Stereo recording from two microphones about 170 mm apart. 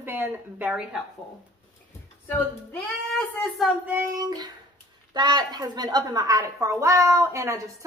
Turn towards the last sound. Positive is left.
turn(degrees=-20)  # may be behind; listen again after turning